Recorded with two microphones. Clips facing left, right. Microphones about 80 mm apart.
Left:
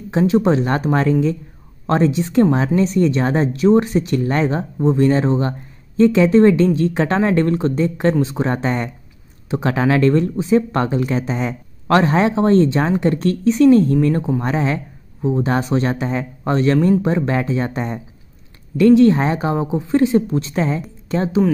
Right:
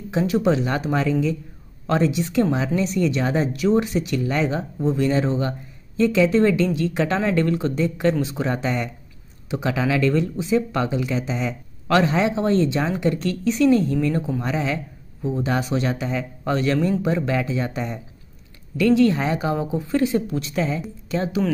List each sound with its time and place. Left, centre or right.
0.1 s speech: left